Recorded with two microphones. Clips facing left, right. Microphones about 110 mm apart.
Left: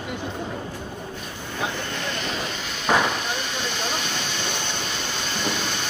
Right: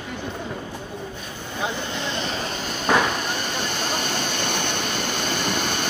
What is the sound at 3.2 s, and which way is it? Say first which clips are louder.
Vehicle: right 2 dB; 45° right (ahead or behind).